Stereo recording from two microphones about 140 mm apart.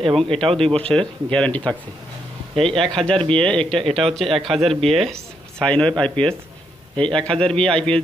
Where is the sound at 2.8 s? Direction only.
5° left (ahead or behind).